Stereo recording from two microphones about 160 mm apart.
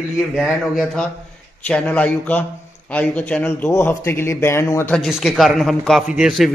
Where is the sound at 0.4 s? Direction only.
Centre (ahead or behind); by 4.9 s 15° left (ahead or behind).